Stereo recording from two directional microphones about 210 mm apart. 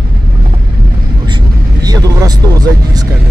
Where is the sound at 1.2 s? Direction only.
20° right (ahead or behind).